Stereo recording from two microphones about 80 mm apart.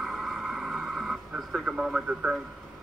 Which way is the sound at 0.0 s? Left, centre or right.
Centre.